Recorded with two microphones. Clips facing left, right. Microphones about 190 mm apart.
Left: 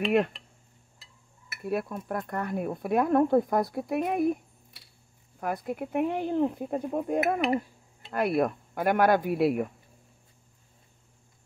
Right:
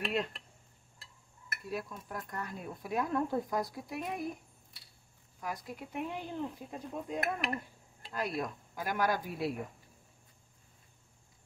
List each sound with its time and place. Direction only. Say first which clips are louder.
0.0 s speech: left 10 dB; 60° left (ahead or behind)
1.6 s speech: left 9 dB; 60° left (ahead or behind)
5.4 s speech: left 10 dB; 55° left (ahead or behind)
7.2 s speech: left 10 dB; 70° left (ahead or behind)